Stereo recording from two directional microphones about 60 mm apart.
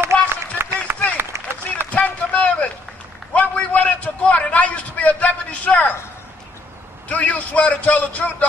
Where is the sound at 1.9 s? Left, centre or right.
Left.